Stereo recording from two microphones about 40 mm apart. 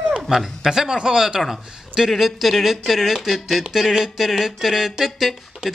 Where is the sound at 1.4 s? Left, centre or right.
Centre.